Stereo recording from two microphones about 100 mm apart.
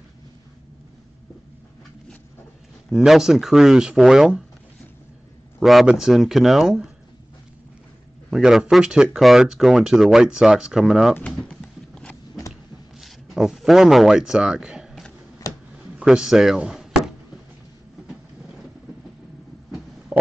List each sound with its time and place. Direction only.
2.9 s speech: 5° right (ahead or behind)
5.6 s speech: centre (ahead or behind)
8.3 s speech: 5° right (ahead or behind)
11.4 s a sound: 10° left (ahead or behind)
13.0 s speech: centre (ahead or behind)
20.1 s stomach rumble: 15° right (ahead or behind)